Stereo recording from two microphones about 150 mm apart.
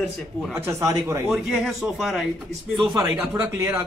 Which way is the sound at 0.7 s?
20° right (ahead or behind).